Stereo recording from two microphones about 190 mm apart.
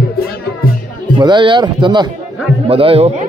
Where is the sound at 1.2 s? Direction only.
25° right (ahead or behind).